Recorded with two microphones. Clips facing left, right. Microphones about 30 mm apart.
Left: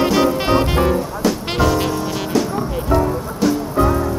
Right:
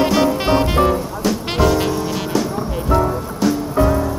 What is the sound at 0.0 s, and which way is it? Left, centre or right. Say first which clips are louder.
Music: even; centre.